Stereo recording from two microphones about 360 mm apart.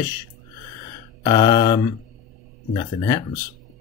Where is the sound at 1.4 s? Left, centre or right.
Centre.